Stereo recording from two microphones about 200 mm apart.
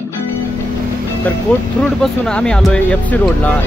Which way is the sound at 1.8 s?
Centre (ahead or behind).